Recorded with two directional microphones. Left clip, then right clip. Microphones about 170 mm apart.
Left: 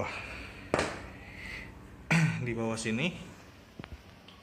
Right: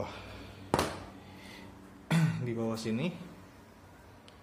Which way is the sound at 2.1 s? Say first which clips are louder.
Left 4 dB; centre (ahead or behind).